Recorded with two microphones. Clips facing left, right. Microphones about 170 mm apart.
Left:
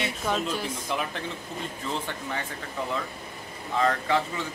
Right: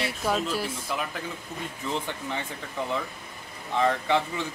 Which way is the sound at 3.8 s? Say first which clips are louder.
Right 1 dB; 20° right (ahead or behind).